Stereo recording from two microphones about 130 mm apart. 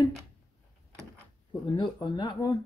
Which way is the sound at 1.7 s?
35° left (ahead or behind).